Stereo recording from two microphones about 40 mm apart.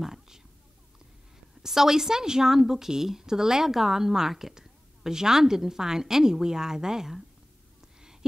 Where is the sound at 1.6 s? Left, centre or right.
Centre.